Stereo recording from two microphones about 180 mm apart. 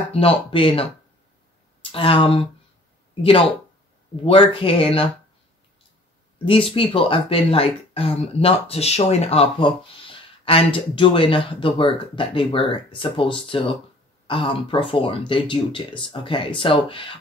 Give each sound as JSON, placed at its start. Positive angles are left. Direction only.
{"t": 0.1, "sound": "speech", "side_deg": 30}
{"t": 6.3, "sound": "speech", "side_deg": 30}